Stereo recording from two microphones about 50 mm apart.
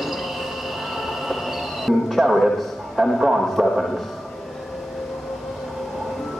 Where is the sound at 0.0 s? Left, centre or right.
Centre.